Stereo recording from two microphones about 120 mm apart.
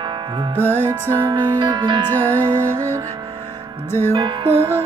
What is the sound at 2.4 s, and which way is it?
Music, 20° right (ahead or behind).